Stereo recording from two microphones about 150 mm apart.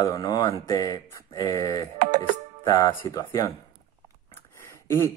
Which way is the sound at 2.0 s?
50° right (ahead or behind).